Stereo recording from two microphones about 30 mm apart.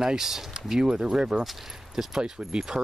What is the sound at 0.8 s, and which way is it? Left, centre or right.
Speech, right.